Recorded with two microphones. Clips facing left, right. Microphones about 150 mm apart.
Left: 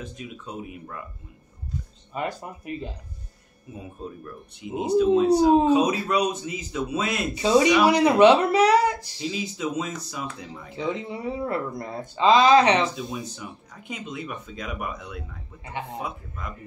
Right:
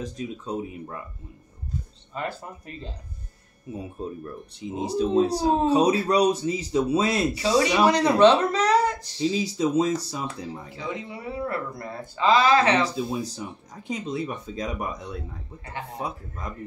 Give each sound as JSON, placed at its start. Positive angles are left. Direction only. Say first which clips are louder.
{"t": 0.0, "sound": "speech", "louder": "right 5 dB", "side_deg": -35}
{"t": 2.1, "sound": "speech", "louder": "left 2 dB", "side_deg": 15}
{"t": 4.8, "sound": "speech", "louder": "left 3 dB", "side_deg": -35}
{"t": 7.3, "sound": "speech", "louder": "left 6 dB", "side_deg": 20}
{"t": 9.2, "sound": "speech", "louder": "right 6 dB", "side_deg": -35}
{"t": 10.7, "sound": "speech", "louder": "left 9 dB", "side_deg": 25}
{"t": 12.8, "sound": "speech", "louder": "right 2 dB", "side_deg": -30}